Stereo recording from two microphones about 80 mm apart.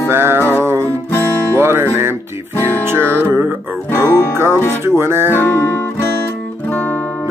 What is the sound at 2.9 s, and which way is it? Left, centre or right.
Music, right.